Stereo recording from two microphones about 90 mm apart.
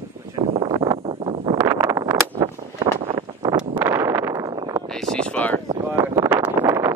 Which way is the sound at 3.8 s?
30° right (ahead or behind).